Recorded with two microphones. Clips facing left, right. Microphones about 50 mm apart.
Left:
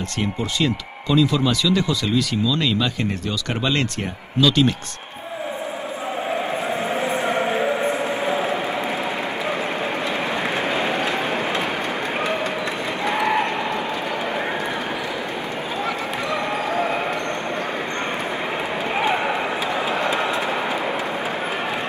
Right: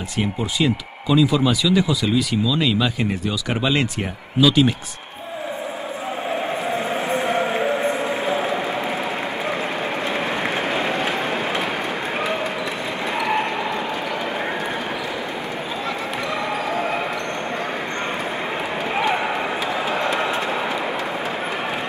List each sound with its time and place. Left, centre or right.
0.2 s speech: centre
7.2 s chant: left
13.0 s basketball bounce: left
16.7 s basketball bounce: left
20.2 s vehicle: right